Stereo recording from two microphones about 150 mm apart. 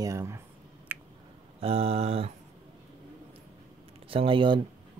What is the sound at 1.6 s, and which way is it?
Speech, 40° right (ahead or behind).